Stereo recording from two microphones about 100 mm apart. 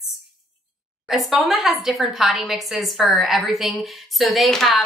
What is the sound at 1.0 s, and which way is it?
A woman's voice, centre (ahead or behind).